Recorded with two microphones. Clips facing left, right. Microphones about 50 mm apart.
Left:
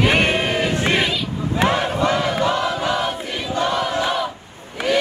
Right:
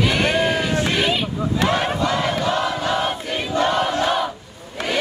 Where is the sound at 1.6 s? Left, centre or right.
Left.